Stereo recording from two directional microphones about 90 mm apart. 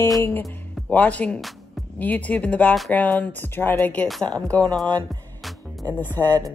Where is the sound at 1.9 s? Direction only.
20° left (ahead or behind).